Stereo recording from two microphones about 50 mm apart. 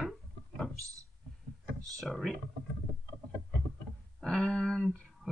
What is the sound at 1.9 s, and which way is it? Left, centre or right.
Speech, centre.